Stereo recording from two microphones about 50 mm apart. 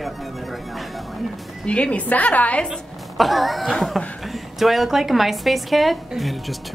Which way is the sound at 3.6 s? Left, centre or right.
Centre.